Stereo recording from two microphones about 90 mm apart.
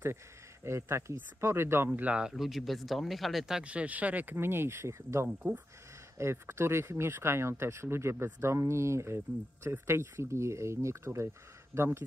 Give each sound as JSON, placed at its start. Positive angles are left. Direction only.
{"t": 0.7, "sound": "speech", "side_deg": -30}
{"t": 2.3, "sound": "speech", "side_deg": 0}